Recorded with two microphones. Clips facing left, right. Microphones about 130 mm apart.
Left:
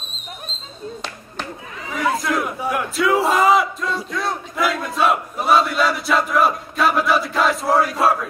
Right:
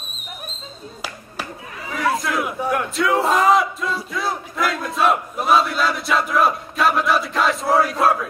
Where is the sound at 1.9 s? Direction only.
Centre (ahead or behind).